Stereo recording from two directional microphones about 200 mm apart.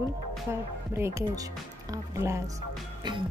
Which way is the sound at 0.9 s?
15° right (ahead or behind).